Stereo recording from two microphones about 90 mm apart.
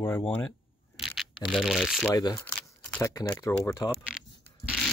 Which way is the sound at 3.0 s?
45° left (ahead or behind).